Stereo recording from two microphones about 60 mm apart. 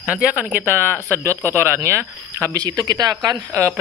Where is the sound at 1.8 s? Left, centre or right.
Right.